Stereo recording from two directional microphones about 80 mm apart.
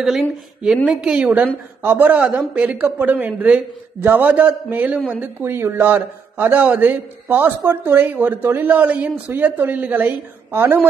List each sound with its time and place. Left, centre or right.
0.0 s a woman's voice: centre
10.0 s a woman's voice: right